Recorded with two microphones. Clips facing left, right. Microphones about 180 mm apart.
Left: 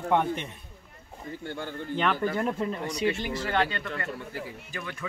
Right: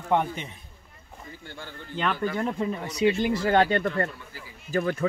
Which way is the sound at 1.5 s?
55° left (ahead or behind).